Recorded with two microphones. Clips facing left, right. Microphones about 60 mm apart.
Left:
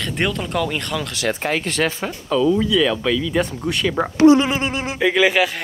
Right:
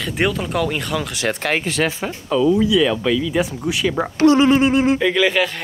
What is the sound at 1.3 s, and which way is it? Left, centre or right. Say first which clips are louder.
Speech: right 1 dB; right.